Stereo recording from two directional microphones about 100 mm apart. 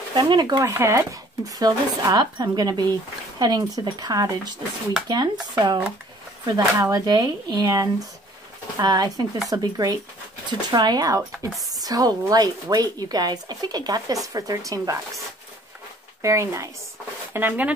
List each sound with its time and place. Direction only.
0.1 s speech: 45° right (ahead or behind)
0.7 s speech: 30° right (ahead or behind)
16.2 s speech: 30° right (ahead or behind)
17.3 s speech: 20° right (ahead or behind)